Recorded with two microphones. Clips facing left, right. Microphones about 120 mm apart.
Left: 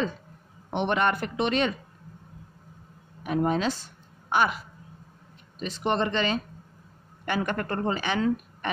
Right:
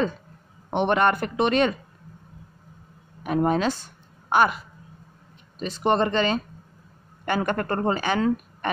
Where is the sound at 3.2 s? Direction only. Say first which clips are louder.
Right 3 dB; 50° right (ahead or behind).